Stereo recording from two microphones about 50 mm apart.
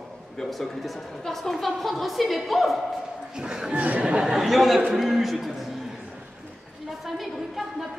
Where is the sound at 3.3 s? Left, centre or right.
Centre.